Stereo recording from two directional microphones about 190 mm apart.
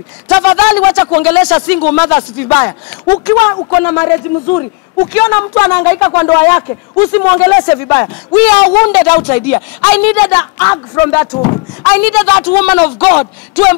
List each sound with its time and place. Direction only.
0.3 s speech: 10° left (ahead or behind)
11.3 s speech: 25° left (ahead or behind)
11.8 s speech: 10° left (ahead or behind)